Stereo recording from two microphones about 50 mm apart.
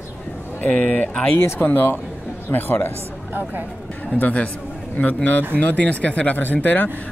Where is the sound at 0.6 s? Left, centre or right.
Left.